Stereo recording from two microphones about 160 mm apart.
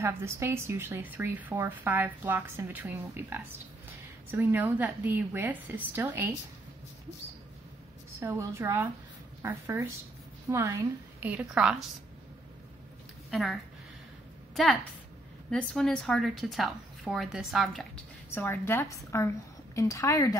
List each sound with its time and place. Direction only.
0.0 s a woman's voice: 15° right (ahead or behind)
8.2 s a woman's voice: 15° right (ahead or behind)
13.3 s a woman's voice: centre (ahead or behind)
18.3 s a woman's voice: 15° left (ahead or behind)